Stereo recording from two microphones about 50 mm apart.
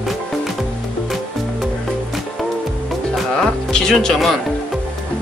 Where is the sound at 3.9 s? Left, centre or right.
Centre.